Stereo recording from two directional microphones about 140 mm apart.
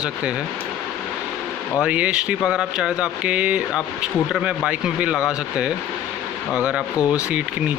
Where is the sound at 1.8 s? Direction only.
10° right (ahead or behind).